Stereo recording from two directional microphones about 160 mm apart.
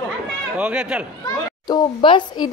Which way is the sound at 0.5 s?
5° right (ahead or behind).